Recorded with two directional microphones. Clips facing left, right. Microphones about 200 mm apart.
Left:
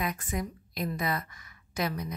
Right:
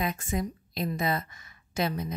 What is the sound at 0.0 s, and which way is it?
A woman's voice, 25° right (ahead or behind).